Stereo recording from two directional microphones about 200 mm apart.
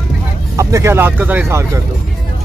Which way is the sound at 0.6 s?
15° right (ahead or behind).